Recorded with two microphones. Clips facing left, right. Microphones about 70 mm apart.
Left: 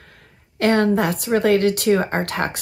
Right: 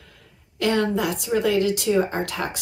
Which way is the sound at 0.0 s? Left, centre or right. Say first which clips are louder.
Left 3 dB; left.